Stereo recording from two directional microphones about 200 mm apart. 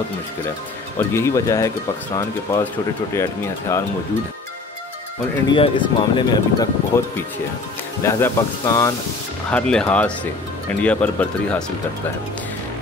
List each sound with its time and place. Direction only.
0.9 s speech: 15° left (ahead or behind)
3.2 s speech: 15° left (ahead or behind)
5.5 s speech: 25° left (ahead or behind)
6.9 s speech: 10° left (ahead or behind)
9.5 s speech: 5° left (ahead or behind)